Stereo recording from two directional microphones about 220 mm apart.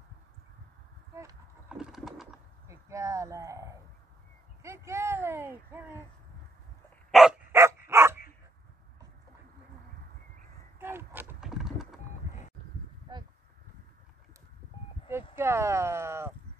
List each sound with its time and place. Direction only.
1.8 s pigeon: centre (ahead or behind)
2.7 s speech: 15° right (ahead or behind)
7.1 s dog: centre (ahead or behind)
10.8 s horse: 10° right (ahead or behind)
13.1 s a sound: 20° right (ahead or behind)
15.3 s a sound: 10° right (ahead or behind)